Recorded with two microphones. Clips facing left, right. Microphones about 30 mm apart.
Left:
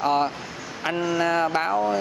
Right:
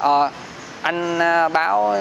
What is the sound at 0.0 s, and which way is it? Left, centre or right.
Speech, centre.